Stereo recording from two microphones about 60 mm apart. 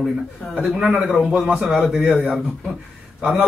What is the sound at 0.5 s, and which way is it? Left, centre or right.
A man's voice, centre.